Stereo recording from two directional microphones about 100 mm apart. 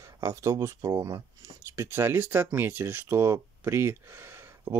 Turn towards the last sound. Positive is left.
turn(degrees=-25)  # may be behind; listen again after turning